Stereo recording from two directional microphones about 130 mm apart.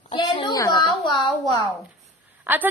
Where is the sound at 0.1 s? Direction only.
40° left (ahead or behind).